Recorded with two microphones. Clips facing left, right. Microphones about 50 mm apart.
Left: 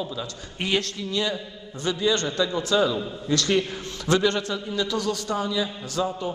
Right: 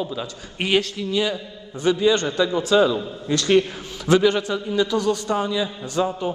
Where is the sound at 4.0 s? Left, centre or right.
Centre.